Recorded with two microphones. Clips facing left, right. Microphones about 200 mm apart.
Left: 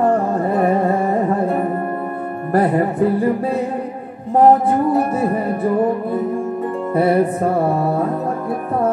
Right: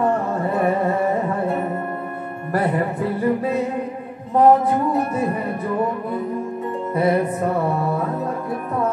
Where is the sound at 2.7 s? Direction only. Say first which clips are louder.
Left 6 dB; 30° left (ahead or behind).